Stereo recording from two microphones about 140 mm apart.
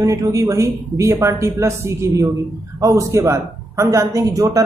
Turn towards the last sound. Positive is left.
turn(degrees=-25)  # may be behind; listen again after turning